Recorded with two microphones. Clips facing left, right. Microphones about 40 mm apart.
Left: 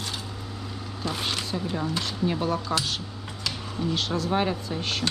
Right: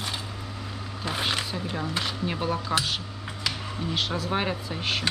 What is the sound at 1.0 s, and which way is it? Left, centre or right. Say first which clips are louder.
Speech: right 2 dB; centre.